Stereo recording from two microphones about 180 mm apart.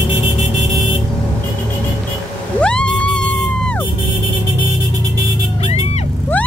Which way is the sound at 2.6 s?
5° left (ahead or behind).